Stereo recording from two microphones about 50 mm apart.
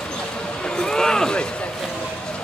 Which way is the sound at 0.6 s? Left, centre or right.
Centre.